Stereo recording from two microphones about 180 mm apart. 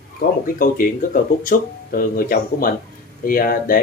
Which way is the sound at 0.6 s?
50° left (ahead or behind).